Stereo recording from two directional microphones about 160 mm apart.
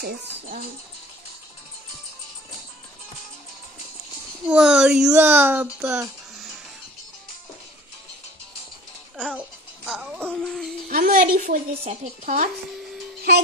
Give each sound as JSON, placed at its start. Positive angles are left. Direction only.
{"t": 4.5, "sound": "speech", "side_deg": -5}
{"t": 9.1, "sound": "babbling", "side_deg": -5}
{"t": 9.8, "sound": "speech", "side_deg": 0}
{"t": 10.9, "sound": "a woman's voice", "side_deg": -60}